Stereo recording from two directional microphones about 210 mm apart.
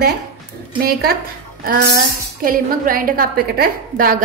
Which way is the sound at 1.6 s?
45° right (ahead or behind).